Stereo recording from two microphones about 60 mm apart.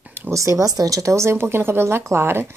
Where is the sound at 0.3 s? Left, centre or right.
Right.